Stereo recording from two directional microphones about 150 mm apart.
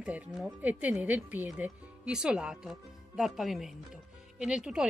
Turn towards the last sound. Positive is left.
turn(degrees=-5)  # may be behind; listen again after turning